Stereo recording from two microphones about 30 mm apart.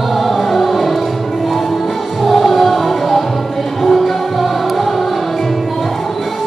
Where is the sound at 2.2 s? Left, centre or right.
Centre.